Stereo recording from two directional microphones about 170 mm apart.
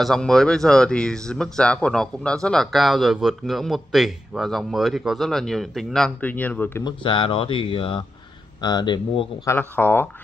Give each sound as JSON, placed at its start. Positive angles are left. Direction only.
{"t": 0.0, "sound": "speech", "side_deg": 0}
{"t": 6.8, "sound": "speech", "side_deg": 30}
{"t": 9.5, "sound": "speech", "side_deg": 10}